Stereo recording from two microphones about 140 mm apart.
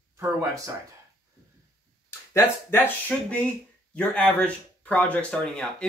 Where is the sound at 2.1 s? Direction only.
15° left (ahead or behind).